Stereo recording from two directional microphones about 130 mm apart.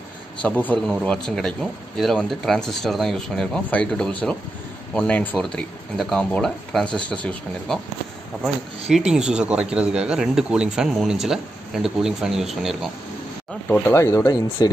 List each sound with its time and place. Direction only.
0.4 s speech: 10° left (ahead or behind)
8.8 s speech: 5° right (ahead or behind)
13.7 s speech: 20° left (ahead or behind)